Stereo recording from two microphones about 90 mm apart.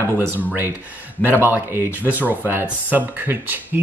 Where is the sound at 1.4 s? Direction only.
25° right (ahead or behind).